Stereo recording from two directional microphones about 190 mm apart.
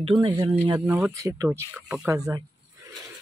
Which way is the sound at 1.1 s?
15° right (ahead or behind).